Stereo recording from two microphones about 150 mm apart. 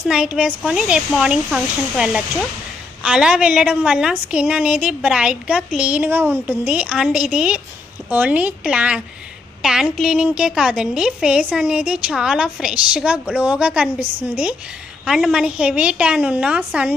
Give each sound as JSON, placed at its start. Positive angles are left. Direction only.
{"t": 0.1, "sound": "a woman's voice", "side_deg": -5}